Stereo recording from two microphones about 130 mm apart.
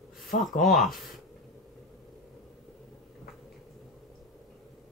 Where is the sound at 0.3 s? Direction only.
85° left.